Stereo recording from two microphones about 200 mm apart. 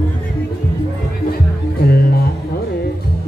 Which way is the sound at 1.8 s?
50° left (ahead or behind).